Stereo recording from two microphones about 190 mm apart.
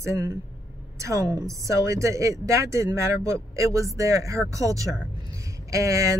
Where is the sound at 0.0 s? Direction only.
15° right (ahead or behind).